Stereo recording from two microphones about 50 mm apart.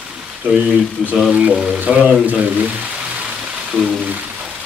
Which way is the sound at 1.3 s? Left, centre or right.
Right.